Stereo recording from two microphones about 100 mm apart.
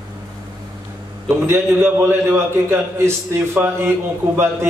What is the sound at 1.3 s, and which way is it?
A man's voice, 25° right (ahead or behind).